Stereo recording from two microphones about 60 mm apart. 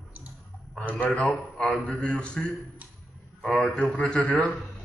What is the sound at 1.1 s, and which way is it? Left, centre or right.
A man's voice, centre.